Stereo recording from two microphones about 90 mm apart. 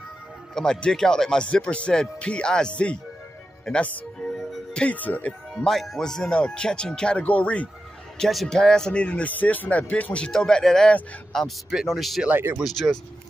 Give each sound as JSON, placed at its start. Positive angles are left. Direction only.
{"t": 0.6, "sound": "speech", "side_deg": 10}
{"t": 4.4, "sound": "music", "side_deg": 5}
{"t": 4.8, "sound": "speech", "side_deg": 20}
{"t": 5.6, "sound": "speech", "side_deg": 0}
{"t": 8.2, "sound": "speech", "side_deg": 5}
{"t": 12.3, "sound": "speech", "side_deg": -25}
{"t": 12.5, "sound": "speech", "side_deg": 0}